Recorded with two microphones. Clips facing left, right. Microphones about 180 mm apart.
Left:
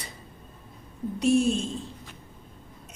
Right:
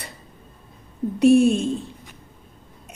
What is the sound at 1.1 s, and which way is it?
Speech, 65° right (ahead or behind).